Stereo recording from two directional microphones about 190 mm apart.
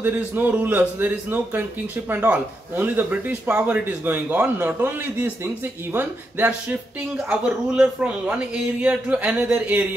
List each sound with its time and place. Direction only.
0.0 s speech: 10° right (ahead or behind)